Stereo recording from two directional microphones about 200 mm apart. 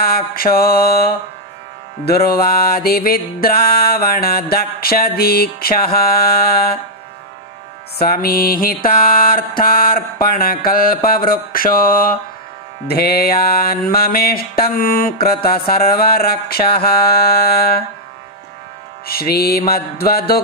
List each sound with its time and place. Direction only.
0.0 s mantra: 50° left (ahead or behind)
8.0 s mantra: 50° left (ahead or behind)
19.0 s mantra: 50° left (ahead or behind)